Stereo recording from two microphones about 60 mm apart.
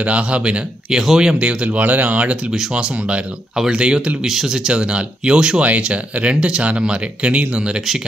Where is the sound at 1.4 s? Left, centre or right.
Centre.